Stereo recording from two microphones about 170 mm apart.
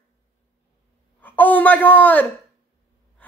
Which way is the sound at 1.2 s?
10° left (ahead or behind).